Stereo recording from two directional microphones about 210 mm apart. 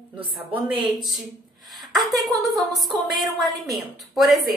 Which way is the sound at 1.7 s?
Centre (ahead or behind).